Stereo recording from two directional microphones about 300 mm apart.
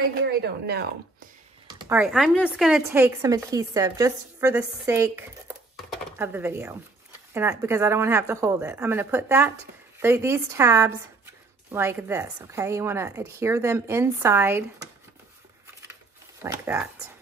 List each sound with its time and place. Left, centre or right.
0.1 s speech: right
1.7 s speech: centre
16.4 s speech: centre